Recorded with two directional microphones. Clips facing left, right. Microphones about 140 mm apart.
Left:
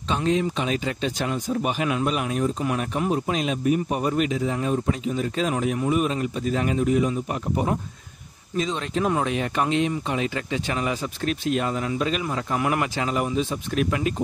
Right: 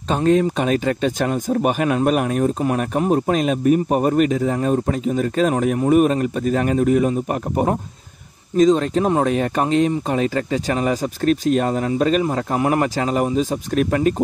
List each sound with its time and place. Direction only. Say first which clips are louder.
0.1 s speech: right 6 dB; 50° right (ahead or behind)